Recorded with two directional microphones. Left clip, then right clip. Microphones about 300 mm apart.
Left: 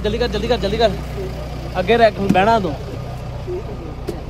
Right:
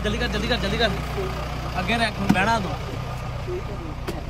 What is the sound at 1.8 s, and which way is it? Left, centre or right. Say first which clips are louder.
Speech: left 10 dB; left.